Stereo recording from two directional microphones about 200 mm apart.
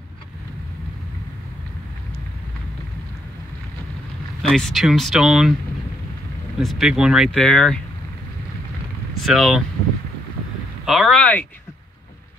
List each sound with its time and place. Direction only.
4.4 s speech: centre (ahead or behind)
6.6 s speech: centre (ahead or behind)
9.2 s speech: centre (ahead or behind)
10.9 s speech: centre (ahead or behind)